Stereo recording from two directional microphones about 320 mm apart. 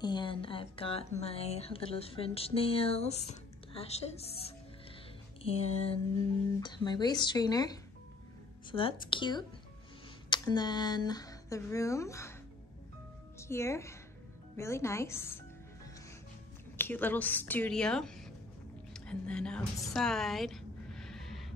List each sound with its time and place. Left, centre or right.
0.0 s speech: centre
10.3 s speech: centre
13.4 s a woman's voice: centre
18.9 s a sound: centre